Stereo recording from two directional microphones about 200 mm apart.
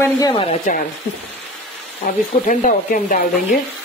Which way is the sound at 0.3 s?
30° left (ahead or behind).